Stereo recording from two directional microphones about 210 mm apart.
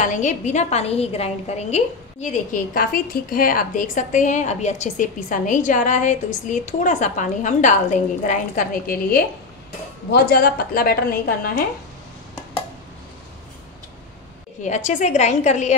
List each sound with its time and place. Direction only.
0.0 s a woman's voice: 35° left (ahead or behind)
14.6 s a woman's voice: 35° left (ahead or behind)